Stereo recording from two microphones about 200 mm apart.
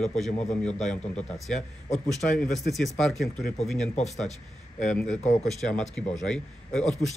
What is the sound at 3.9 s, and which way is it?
Speech, 35° left (ahead or behind).